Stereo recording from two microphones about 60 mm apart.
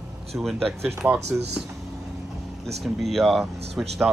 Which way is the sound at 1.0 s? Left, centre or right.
Right.